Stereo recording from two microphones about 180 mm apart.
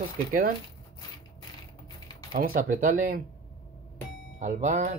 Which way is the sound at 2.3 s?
50° right (ahead or behind).